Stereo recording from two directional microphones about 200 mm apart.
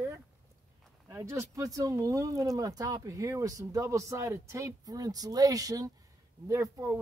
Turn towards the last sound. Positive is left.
turn(degrees=-15)  # may be behind; listen again after turning